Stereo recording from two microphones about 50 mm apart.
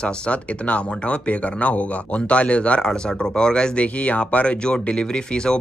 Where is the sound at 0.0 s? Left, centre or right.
Left.